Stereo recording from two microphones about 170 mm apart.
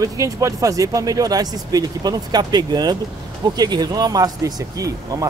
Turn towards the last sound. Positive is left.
turn(degrees=-20)  # may be behind; listen again after turning